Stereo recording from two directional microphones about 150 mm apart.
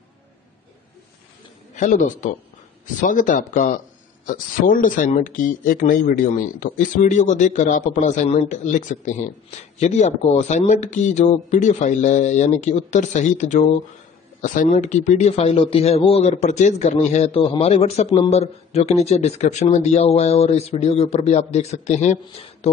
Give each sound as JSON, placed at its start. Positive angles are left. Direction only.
{"t": 1.8, "sound": "speech", "side_deg": 55}